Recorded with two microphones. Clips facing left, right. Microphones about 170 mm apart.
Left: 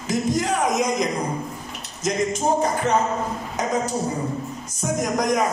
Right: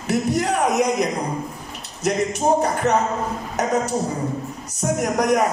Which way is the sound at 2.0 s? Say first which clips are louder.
Right 2 dB; 65° right (ahead or behind).